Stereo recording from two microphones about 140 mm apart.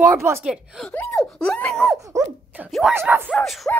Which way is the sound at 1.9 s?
25° right (ahead or behind).